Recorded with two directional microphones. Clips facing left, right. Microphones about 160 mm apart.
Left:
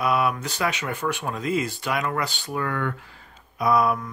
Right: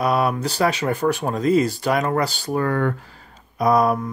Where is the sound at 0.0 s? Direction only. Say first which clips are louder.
Right 3 dB; 40° right (ahead or behind).